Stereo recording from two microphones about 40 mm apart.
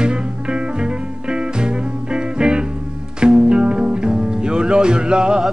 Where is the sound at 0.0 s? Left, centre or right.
Right.